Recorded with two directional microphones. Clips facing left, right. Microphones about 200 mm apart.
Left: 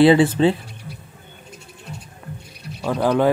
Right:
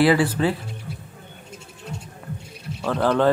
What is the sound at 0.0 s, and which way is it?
Speech, 25° left (ahead or behind).